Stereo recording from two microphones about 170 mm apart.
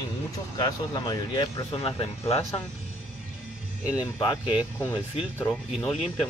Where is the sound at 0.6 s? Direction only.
25° left (ahead or behind).